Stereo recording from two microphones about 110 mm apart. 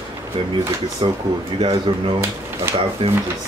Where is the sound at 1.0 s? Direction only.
50° right (ahead or behind).